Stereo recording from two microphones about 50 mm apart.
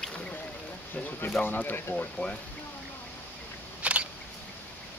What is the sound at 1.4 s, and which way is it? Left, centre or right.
Speech, left.